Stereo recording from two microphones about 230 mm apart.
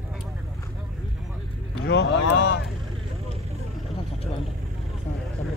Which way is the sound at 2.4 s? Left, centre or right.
Left.